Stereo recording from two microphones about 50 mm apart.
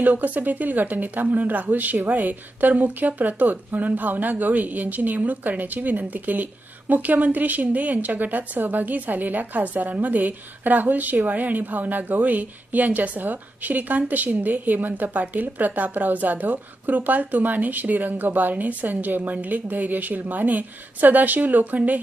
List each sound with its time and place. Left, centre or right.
0.0 s speech: right